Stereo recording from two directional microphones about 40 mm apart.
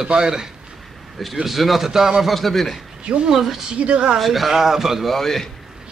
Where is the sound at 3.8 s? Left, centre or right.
Right.